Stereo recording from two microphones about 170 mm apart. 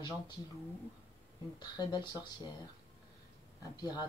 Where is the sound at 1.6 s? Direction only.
25° left (ahead or behind).